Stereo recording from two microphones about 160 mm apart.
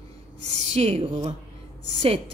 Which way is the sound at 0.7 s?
40° right (ahead or behind).